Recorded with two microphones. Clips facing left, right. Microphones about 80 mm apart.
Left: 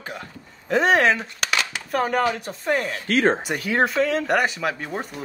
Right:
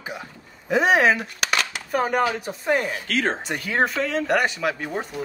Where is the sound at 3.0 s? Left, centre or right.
Left.